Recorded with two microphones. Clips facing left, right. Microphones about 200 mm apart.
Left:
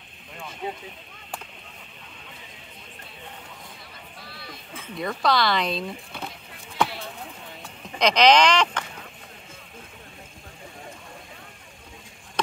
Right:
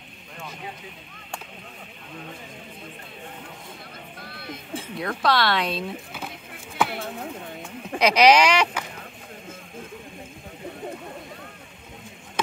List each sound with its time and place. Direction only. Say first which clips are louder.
4.2 s vehicle: right 5 dB; 55° right (ahead or behind)
4.9 s speech: even; centre (ahead or behind)
8.0 s speech: right 1 dB; 10° right (ahead or behind)